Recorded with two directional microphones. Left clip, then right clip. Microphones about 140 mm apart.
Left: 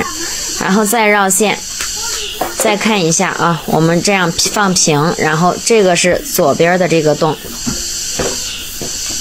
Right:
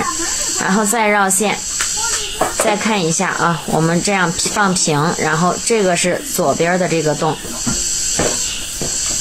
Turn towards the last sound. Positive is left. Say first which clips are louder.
# left 5 dB
turn(degrees=40)  # may be behind; listen again after turning